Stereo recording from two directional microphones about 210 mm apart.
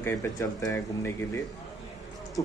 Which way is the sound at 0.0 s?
15° left (ahead or behind).